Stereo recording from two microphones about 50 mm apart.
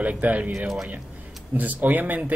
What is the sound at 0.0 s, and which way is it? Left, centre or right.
Speech, right.